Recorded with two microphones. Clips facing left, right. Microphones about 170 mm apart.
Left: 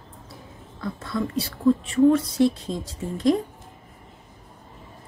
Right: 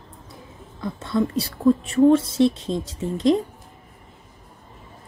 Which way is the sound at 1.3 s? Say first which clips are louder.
Left 1 dB; 40° right (ahead or behind).